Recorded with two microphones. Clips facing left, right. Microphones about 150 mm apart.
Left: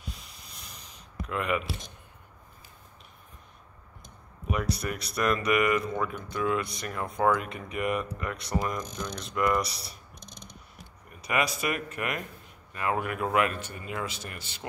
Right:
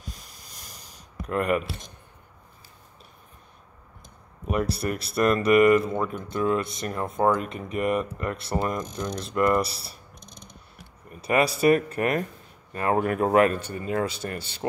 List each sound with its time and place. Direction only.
0.0 s boat: 40° right (ahead or behind)
1.2 s speech: 45° right (ahead or behind)
4.7 s speech: 30° right (ahead or behind)
7.7 s speech: 40° right (ahead or behind)
8.5 s speech: 30° right (ahead or behind)
8.7 s speech: 40° right (ahead or behind)
11.1 s speech: 30° right (ahead or behind)